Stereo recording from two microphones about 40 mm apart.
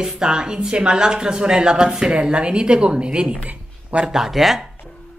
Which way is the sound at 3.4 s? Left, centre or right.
Right.